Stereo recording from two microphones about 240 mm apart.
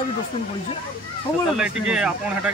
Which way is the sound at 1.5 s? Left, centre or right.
Centre.